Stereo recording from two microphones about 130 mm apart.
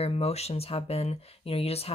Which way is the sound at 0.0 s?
50° left (ahead or behind).